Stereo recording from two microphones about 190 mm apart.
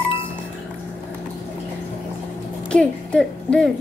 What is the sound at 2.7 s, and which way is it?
Speech, 5° left (ahead or behind).